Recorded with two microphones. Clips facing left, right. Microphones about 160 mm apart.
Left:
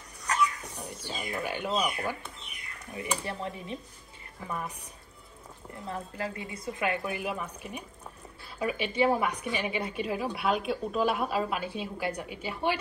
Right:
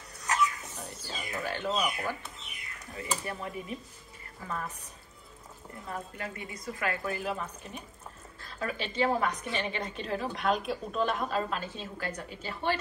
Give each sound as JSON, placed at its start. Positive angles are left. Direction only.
{"t": 0.7, "sound": "speech", "side_deg": 15}
{"t": 4.5, "sound": "a woman's voice", "side_deg": 15}
{"t": 6.1, "sound": "a woman's voice", "side_deg": 30}